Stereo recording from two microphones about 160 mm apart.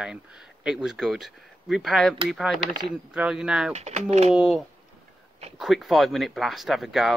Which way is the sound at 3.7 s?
45° right (ahead or behind).